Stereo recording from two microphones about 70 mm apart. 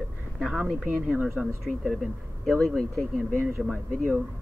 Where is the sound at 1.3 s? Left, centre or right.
Centre.